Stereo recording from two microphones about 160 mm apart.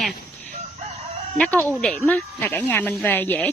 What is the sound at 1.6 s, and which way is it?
Speech, 5° left (ahead or behind).